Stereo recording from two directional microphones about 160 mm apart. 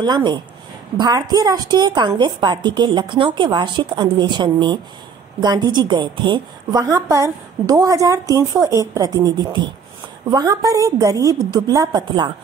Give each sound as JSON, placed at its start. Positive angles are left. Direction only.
{"t": 0.0, "sound": "a woman's voice", "side_deg": -25}